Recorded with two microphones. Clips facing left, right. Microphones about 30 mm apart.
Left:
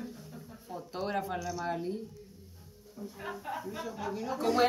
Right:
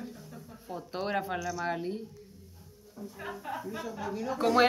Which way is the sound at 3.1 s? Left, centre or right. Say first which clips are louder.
Right 1 dB; centre.